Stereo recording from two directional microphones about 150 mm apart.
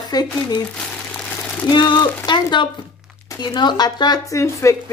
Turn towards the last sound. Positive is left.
turn(degrees=20)  # may be behind; listen again after turning